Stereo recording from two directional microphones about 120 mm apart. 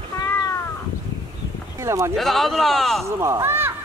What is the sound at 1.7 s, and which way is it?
Speech, 25° right (ahead or behind).